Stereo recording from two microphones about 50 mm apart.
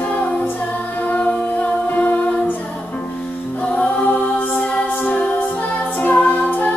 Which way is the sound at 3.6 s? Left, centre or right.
Left.